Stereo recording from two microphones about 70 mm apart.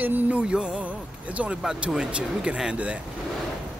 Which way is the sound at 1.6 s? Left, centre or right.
Centre.